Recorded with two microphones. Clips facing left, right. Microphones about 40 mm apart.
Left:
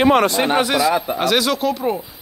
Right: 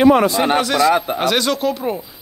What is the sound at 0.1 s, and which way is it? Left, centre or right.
Speech, left.